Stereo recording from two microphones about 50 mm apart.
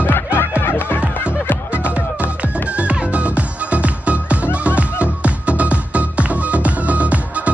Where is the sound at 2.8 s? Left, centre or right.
Right.